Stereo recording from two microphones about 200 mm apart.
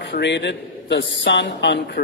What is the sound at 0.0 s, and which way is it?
A man's voice, 60° left (ahead or behind).